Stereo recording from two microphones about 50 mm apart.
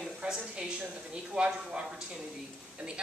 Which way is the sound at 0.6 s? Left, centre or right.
Centre.